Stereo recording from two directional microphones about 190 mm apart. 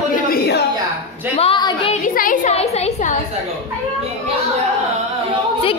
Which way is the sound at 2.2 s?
45° left (ahead or behind).